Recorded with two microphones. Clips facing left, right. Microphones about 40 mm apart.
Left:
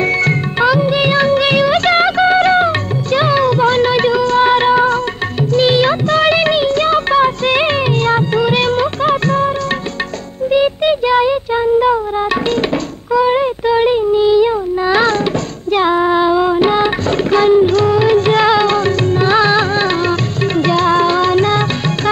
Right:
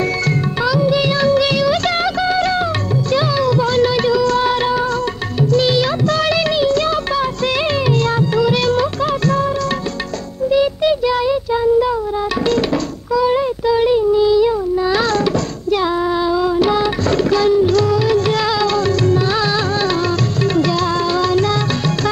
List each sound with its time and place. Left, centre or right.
0.0 s music of bollywood: left
10.5 s child singing: left
12.4 s music: left
15.7 s carnatic music: left